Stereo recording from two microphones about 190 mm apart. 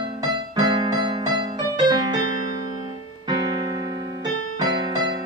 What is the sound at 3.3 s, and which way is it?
Keyboard, 20° right (ahead or behind).